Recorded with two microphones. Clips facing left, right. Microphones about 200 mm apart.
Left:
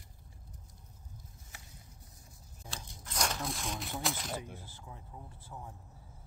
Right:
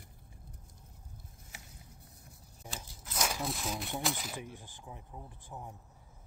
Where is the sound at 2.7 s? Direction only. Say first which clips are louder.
Right 1 dB; 5° right (ahead or behind).